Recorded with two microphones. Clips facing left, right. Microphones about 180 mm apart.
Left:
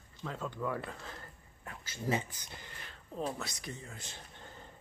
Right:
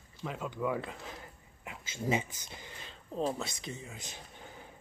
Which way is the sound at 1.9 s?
20° right (ahead or behind).